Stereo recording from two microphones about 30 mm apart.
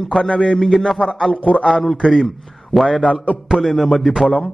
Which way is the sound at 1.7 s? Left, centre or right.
Centre.